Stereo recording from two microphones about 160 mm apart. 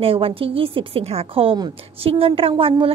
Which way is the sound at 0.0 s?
35° right (ahead or behind).